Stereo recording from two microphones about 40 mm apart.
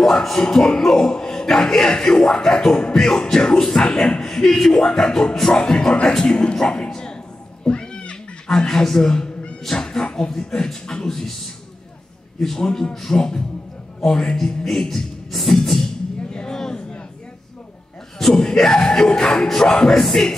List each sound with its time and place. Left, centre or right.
0.0 s speech: centre
2.9 s music: centre
4.0 s speech: centre
4.7 s music: centre
5.5 s speech: centre
7.6 s cat: left
8.5 s music: centre
9.7 s speech: centre
10.5 s music: centre
12.4 s music: centre
16.3 s a sound: centre
18.3 s music: centre
20.0 s music: centre